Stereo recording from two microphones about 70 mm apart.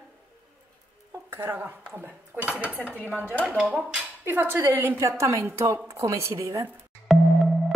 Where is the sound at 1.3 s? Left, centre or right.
Right.